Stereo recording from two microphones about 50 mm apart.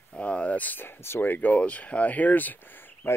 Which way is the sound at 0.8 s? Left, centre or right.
Left.